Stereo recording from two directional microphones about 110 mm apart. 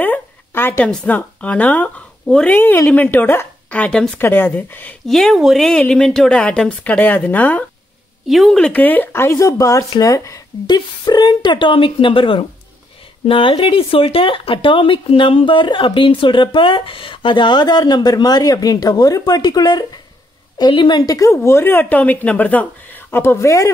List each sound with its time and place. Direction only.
0.0 s a woman's voice: 15° left (ahead or behind)
4.2 s speech: 20° left (ahead or behind)
5.0 s speech: 5° left (ahead or behind)
8.3 s a woman's voice: 5° left (ahead or behind); by 23.7 s 30° left (ahead or behind)